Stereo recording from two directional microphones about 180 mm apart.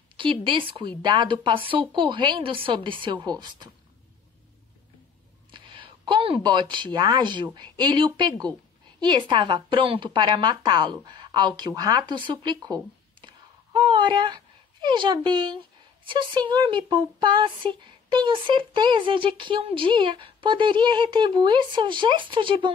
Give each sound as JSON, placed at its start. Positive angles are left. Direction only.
{"t": 0.2, "sound": "speech", "side_deg": -25}
{"t": 5.5, "sound": "speech", "side_deg": -25}